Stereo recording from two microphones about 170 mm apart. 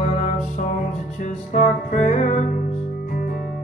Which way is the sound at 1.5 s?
40° left (ahead or behind).